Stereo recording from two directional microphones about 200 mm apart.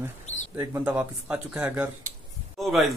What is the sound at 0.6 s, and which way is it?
Speech, 10° right (ahead or behind).